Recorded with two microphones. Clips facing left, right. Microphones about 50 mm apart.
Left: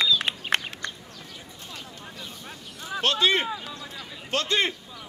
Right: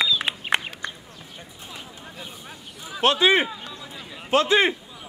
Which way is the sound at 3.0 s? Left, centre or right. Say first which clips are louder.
Right 5 dB; centre.